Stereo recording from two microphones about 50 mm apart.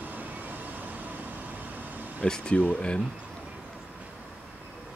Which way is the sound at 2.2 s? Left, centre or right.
Centre.